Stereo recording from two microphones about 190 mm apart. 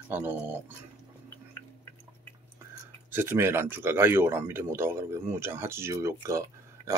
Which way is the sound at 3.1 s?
10° right (ahead or behind).